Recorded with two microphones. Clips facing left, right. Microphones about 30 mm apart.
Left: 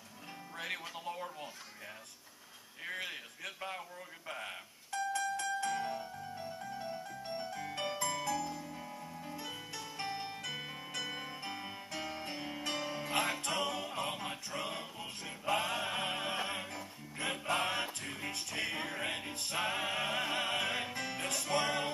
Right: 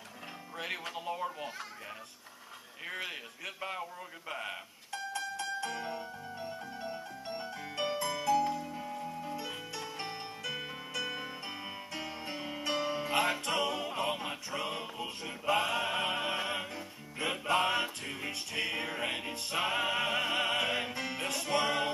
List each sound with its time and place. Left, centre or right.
0.9 s a man's voice: centre
3.1 s a man's voice: centre
4.3 s music: centre
11.1 s music: centre